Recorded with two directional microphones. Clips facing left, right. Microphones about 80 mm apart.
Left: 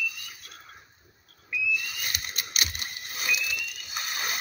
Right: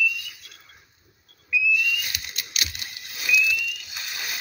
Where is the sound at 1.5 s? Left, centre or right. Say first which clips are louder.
Right 6 dB; left.